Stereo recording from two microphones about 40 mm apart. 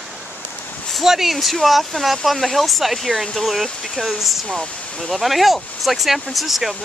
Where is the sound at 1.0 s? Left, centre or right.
Centre.